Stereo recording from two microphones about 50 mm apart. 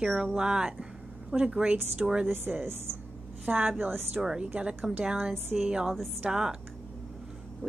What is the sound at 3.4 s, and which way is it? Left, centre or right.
Speech, right.